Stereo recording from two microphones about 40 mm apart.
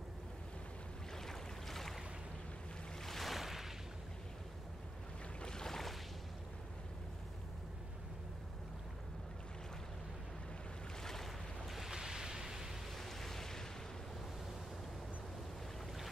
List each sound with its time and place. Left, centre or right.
1.1 s boat: centre
3.0 s waves: centre
5.4 s boat: centre
11.0 s boat: centre
11.7 s a sound: centre
12.9 s waves: centre